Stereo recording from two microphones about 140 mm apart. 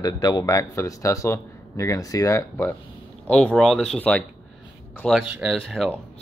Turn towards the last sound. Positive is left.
turn(degrees=5)  # may be behind; listen again after turning